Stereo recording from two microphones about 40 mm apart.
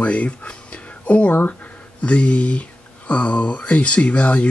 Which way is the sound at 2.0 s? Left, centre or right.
Left.